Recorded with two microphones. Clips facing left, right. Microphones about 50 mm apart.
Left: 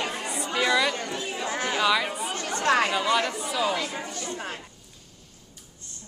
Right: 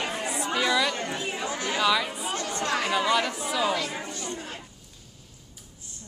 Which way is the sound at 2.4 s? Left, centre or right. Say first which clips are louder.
Left 6 dB; left.